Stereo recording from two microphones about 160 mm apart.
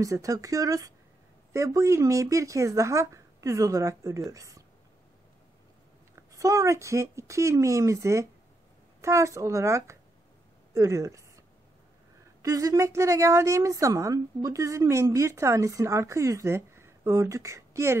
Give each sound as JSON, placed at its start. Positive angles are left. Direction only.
{"t": 0.0, "sound": "speech", "side_deg": -20}
{"t": 6.3, "sound": "speech", "side_deg": -20}
{"t": 10.7, "sound": "a sound", "side_deg": -20}
{"t": 12.4, "sound": "speech", "side_deg": -20}